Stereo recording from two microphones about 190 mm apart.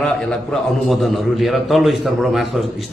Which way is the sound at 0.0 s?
5° left (ahead or behind).